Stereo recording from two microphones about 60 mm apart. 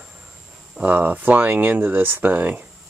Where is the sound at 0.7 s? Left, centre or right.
Right.